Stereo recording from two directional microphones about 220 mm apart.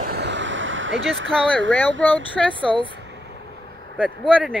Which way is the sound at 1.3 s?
5° left (ahead or behind).